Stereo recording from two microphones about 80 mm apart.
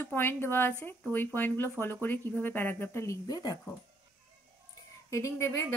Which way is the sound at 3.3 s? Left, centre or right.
Left.